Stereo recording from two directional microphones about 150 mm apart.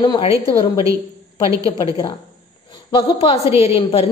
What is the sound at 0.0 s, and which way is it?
Speech, 35° left (ahead or behind).